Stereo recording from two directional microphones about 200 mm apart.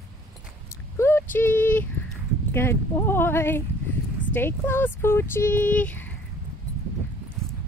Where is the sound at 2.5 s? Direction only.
10° left (ahead or behind).